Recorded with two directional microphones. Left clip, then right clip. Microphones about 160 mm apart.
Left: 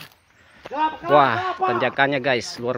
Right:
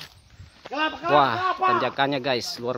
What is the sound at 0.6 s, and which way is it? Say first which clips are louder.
Speech: left 2 dB; 75° left (ahead or behind).